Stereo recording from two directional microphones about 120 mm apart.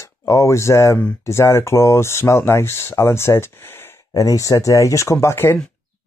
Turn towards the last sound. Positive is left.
turn(degrees=20)  # may be behind; listen again after turning